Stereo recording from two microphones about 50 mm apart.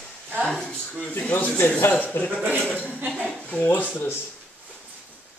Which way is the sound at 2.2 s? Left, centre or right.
Left.